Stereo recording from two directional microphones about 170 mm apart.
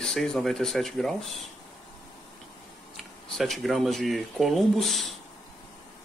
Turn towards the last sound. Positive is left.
turn(degrees=0)  # may be behind; listen again after turning